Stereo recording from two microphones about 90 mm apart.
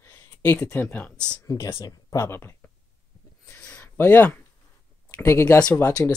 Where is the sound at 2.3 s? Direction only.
30° left (ahead or behind).